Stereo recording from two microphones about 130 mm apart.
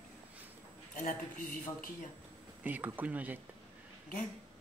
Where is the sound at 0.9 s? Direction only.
85° left.